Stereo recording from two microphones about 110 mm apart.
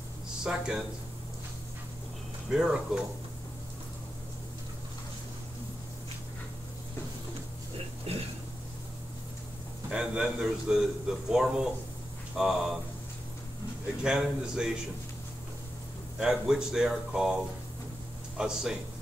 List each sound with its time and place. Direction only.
0.4 s a man's voice: 5° right (ahead or behind)
2.5 s speech: 5° right (ahead or behind)
8.1 s a sound: 60° right (ahead or behind)
9.8 s a man's voice: 5° right (ahead or behind)
14.0 s a man's voice: 5° right (ahead or behind)
16.2 s a man's voice: 5° right (ahead or behind)
18.4 s a man's voice: 5° right (ahead or behind)